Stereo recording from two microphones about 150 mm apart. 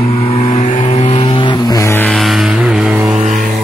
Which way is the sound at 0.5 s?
45° left (ahead or behind).